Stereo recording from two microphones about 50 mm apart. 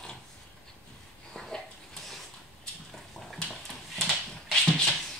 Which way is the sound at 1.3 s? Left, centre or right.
Centre.